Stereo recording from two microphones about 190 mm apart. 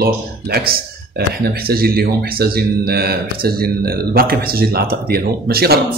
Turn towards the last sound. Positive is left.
turn(degrees=-55)  # may be behind; listen again after turning